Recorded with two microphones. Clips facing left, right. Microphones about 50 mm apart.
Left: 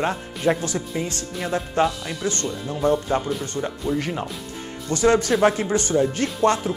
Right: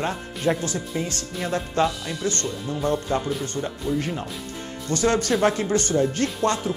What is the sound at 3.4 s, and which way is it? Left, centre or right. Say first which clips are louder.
Speech: left 1 dB; left.